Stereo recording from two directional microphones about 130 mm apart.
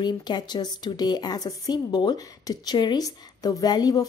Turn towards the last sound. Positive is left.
turn(degrees=30)  # may be behind; listen again after turning